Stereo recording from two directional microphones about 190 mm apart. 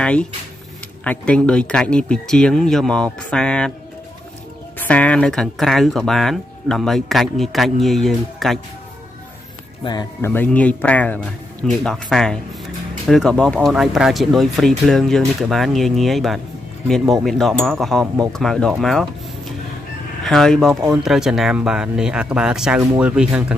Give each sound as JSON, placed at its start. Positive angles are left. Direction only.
{"t": 0.0, "sound": "speech", "side_deg": 5}
{"t": 4.7, "sound": "speech", "side_deg": 5}
{"t": 9.8, "sound": "speech", "side_deg": 20}
{"t": 10.3, "sound": "speech", "side_deg": 10}
{"t": 20.2, "sound": "speech", "side_deg": 0}